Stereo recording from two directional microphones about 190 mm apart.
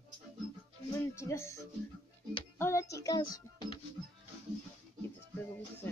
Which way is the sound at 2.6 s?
15° left (ahead or behind).